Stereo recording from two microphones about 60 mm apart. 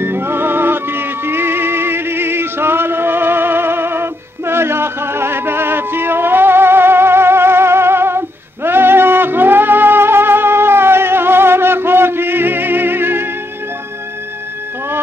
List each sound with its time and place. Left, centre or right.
0.0 s music: right